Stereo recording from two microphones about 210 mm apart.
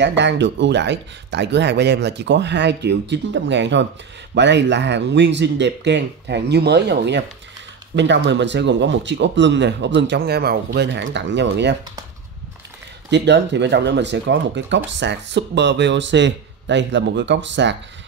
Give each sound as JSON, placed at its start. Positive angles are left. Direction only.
{"t": 0.0, "sound": "speech", "side_deg": -55}
{"t": 13.1, "sound": "speech", "side_deg": -55}